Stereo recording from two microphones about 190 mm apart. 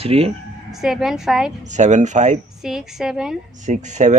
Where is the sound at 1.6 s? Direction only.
40° right (ahead or behind).